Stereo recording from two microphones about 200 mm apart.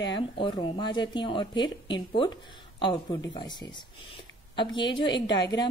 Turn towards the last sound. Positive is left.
turn(degrees=20)  # may be behind; listen again after turning